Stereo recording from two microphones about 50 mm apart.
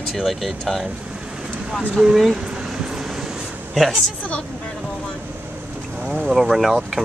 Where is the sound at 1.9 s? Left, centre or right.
Centre.